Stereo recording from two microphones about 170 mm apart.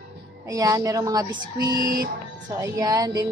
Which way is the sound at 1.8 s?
55° right (ahead or behind).